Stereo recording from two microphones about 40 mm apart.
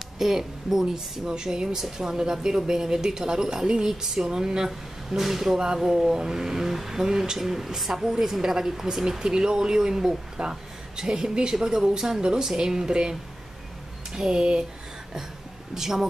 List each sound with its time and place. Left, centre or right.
0.2 s speech: centre
14.1 s speech: centre
15.7 s speech: centre